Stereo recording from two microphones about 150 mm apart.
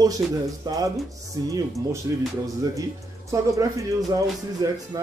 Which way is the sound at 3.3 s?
20° right (ahead or behind).